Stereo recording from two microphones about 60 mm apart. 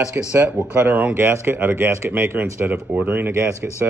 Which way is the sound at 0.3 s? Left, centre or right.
Right.